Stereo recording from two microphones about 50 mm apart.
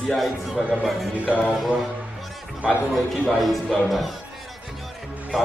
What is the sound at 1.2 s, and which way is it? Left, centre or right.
Music, left.